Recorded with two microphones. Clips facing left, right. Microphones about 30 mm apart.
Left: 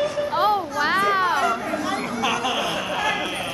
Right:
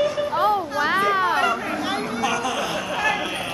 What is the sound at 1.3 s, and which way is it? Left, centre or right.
Chatter, right.